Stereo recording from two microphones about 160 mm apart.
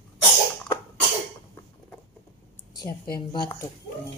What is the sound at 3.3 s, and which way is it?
Speech, 25° left (ahead or behind).